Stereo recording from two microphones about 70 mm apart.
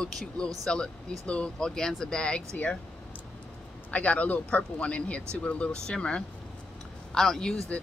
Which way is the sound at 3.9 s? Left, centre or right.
Left.